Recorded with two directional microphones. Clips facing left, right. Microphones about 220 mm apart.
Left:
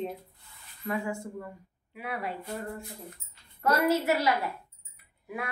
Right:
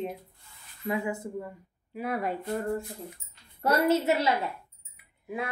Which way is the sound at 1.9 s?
40° right (ahead or behind).